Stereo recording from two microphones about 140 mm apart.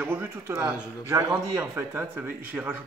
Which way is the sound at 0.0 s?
15° right (ahead or behind).